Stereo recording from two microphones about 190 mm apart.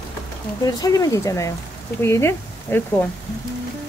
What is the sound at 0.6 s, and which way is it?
Speech, 20° left (ahead or behind).